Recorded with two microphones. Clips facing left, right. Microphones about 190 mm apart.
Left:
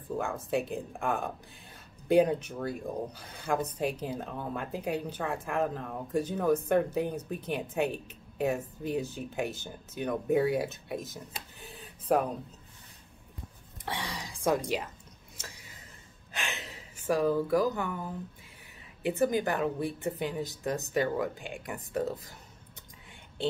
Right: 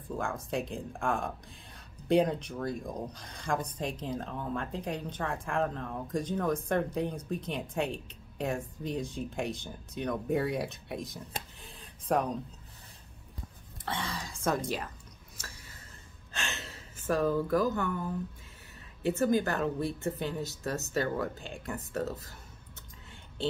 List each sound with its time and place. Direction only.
0.2 s speech: 5° left (ahead or behind)
11.6 s a sound: 5° left (ahead or behind)
13.8 s a woman's voice: 15° left (ahead or behind)
15.3 s a sound: 15° left (ahead or behind)
16.3 s gasp: 15° left (ahead or behind)
19.0 s a woman's voice: 15° left (ahead or behind)